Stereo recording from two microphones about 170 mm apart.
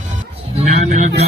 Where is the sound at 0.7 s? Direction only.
45° right (ahead or behind).